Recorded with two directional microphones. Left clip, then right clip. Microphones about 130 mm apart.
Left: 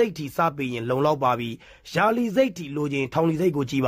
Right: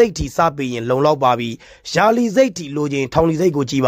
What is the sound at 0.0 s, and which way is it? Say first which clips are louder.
Speech: right 8 dB; 35° right (ahead or behind).